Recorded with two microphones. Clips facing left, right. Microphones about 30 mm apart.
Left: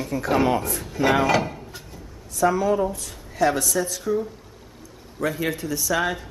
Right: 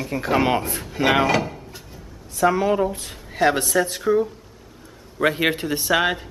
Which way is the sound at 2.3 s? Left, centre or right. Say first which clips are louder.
Right 2 dB; right.